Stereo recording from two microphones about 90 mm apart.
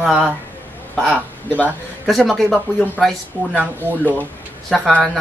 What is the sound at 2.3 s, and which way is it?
Speech, centre (ahead or behind).